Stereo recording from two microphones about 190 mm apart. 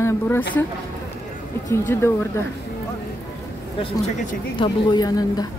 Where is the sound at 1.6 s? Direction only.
15° left (ahead or behind).